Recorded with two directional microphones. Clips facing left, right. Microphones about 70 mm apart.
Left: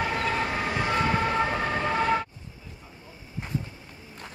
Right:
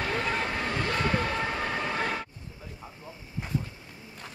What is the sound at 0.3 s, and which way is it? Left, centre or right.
Emergency vehicle, centre.